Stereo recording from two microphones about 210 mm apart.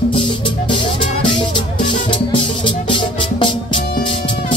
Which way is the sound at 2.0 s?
25° left (ahead or behind).